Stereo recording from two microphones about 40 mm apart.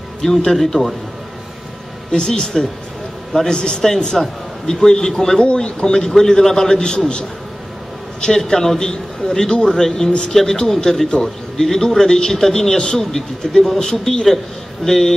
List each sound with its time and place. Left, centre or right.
0.2 s a man's voice: centre
2.1 s a man's voice: left
5.4 s a man's voice: left
6.8 s a man's voice: left